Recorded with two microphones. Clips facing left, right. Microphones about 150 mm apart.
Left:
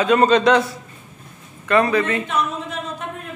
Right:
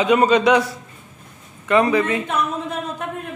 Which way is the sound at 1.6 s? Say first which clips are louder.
Right 1 dB; 15° right (ahead or behind).